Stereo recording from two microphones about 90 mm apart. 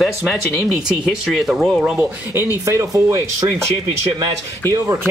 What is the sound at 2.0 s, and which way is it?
Speech, 30° right (ahead or behind).